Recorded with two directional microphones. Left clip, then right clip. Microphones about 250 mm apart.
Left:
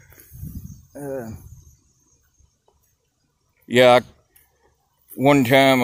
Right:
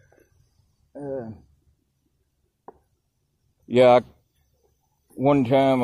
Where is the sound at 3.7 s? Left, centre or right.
Centre.